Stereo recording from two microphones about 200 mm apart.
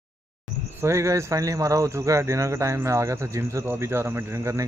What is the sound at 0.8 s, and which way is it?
Speech, 15° right (ahead or behind).